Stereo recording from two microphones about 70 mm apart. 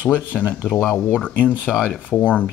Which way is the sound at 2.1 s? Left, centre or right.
Left.